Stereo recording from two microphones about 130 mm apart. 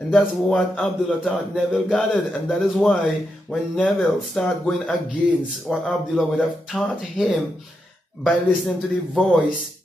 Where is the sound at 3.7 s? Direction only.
10° left (ahead or behind).